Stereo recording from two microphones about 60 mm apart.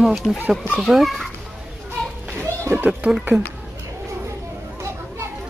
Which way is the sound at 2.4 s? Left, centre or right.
Right.